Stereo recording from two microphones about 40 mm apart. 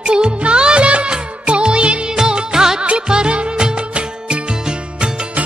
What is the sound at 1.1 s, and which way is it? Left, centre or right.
Music, right.